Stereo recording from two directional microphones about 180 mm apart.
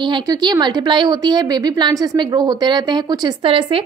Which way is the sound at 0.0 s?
25° right (ahead or behind).